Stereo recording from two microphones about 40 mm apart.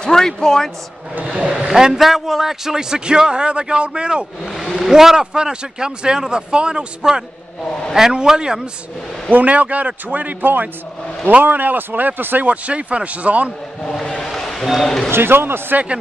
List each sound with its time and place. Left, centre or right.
0.0 s speech: centre
1.2 s speech: right
2.0 s speech: centre; by 4.3 s right
4.8 s a man's voice: centre
9.3 s a man's voice: right
12.4 s a man's voice: right
13.9 s a sound: centre
15.0 s speech: right